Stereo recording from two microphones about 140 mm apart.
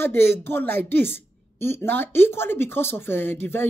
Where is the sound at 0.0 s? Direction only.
15° left (ahead or behind).